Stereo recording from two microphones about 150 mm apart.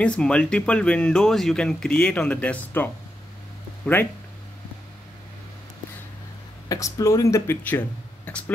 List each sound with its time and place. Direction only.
0.0 s speech: 5° left (ahead or behind)
6.7 s speech: 20° left (ahead or behind)